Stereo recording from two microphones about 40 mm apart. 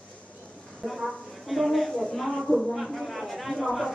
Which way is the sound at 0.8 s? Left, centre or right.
Centre.